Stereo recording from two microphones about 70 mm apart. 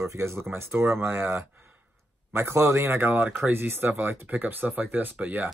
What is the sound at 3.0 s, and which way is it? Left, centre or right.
Speech, right.